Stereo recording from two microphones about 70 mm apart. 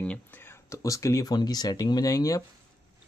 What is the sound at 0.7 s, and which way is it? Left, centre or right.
Speech, left.